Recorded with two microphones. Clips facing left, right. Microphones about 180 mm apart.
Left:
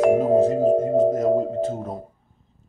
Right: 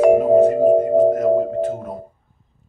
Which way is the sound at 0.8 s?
10° right (ahead or behind).